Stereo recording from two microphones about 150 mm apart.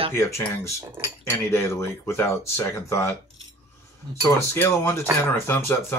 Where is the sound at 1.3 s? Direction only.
15° left (ahead or behind).